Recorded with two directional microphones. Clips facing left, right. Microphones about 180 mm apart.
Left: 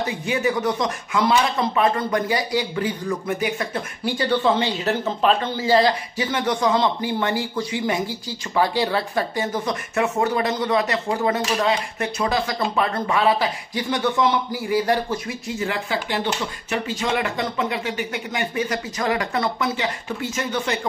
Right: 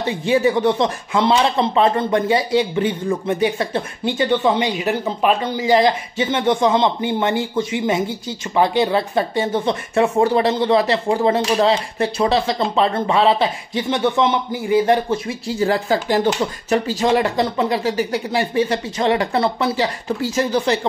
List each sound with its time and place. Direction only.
0.0 s speech: 30° right (ahead or behind)